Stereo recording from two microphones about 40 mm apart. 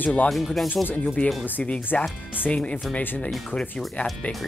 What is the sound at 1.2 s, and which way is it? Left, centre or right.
Speech, left.